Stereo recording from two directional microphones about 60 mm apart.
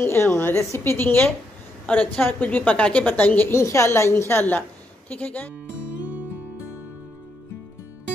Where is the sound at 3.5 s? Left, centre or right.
Left.